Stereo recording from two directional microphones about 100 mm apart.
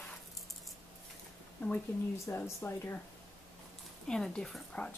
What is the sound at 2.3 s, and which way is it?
Speech, 25° left (ahead or behind).